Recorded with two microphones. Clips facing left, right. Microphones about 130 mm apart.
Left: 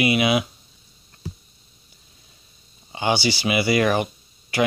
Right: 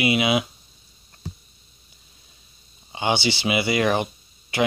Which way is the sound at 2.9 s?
20° right (ahead or behind).